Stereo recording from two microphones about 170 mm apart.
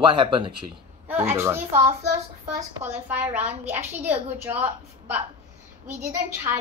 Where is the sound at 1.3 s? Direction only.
15° right (ahead or behind).